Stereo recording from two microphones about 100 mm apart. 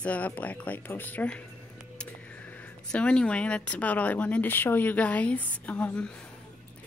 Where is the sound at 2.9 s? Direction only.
10° left (ahead or behind).